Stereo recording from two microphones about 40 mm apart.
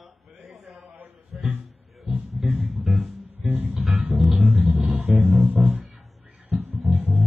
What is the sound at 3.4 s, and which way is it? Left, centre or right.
Music, right.